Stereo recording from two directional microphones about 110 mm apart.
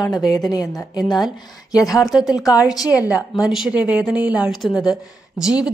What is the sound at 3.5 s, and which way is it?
A woman's voice, 5° right (ahead or behind).